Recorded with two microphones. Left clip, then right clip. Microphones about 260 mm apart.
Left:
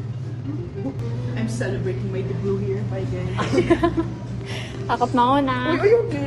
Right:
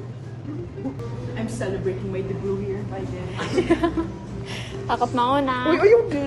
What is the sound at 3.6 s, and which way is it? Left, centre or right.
A woman's voice, centre.